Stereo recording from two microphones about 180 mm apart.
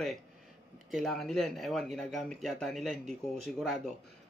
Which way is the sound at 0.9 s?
Centre (ahead or behind).